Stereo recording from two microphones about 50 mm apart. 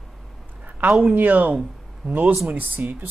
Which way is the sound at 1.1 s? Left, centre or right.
Right.